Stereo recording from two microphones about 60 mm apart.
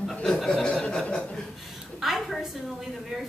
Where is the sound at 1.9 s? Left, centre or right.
Centre.